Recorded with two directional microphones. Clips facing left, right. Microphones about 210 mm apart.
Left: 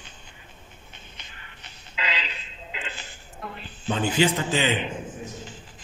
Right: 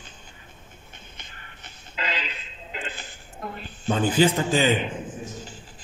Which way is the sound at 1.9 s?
50° right (ahead or behind).